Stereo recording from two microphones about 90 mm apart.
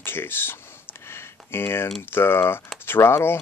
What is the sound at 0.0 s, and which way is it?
Speech, 25° left (ahead or behind).